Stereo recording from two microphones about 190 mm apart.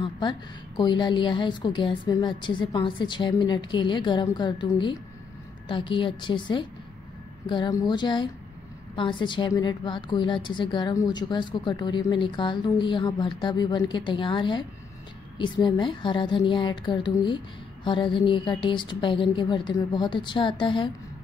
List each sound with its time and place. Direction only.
0.0 s a woman's voice: 25° left (ahead or behind)